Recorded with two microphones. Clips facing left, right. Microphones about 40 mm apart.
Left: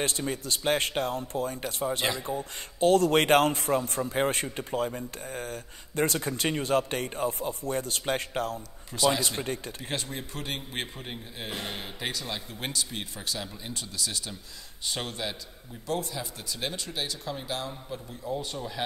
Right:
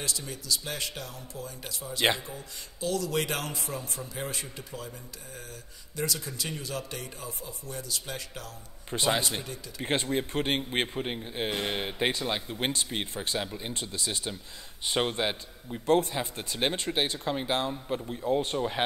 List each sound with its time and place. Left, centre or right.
0.0 s a man's voice: left
2.0 s speech: right
2.2 s a man's voice: left
8.9 s speech: right